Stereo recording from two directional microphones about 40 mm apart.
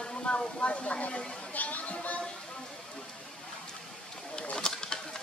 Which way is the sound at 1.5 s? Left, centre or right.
Left.